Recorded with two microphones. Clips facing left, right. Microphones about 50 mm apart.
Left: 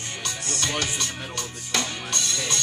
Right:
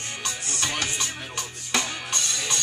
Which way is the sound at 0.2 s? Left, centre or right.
Centre.